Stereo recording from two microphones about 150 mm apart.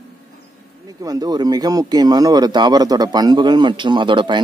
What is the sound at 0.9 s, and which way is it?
Speech, 25° right (ahead or behind).